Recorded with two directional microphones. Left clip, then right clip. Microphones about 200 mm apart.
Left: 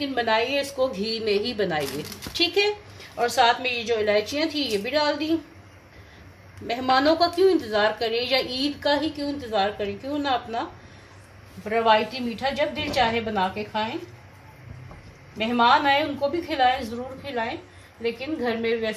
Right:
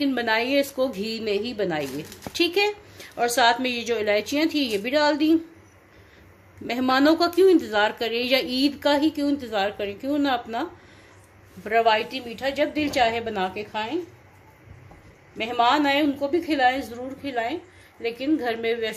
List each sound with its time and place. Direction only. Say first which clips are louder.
0.0 s a woman's voice: even; 40° right (ahead or behind)
3.0 s a woman's voice: even; 50° right (ahead or behind)
6.7 s a woman's voice: even; 40° right (ahead or behind)
11.6 s a woman's voice: even; 55° right (ahead or behind)
15.3 s a woman's voice: left 2 dB; 60° right (ahead or behind)